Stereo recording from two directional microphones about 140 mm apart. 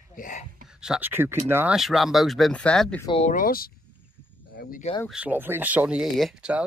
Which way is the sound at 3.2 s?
85° left.